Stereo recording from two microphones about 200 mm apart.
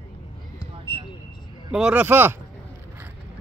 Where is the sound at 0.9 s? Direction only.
25° right (ahead or behind).